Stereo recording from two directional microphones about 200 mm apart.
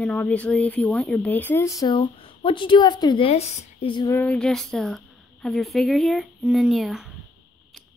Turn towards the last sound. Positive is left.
turn(degrees=0)  # may be behind; listen again after turning